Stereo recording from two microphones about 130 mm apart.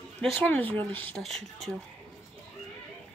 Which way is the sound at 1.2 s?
Centre (ahead or behind).